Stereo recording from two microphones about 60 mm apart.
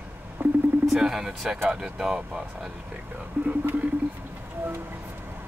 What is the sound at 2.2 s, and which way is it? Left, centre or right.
Speech, right.